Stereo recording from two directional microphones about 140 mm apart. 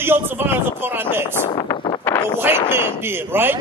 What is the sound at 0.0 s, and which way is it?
Speech, 15° right (ahead or behind).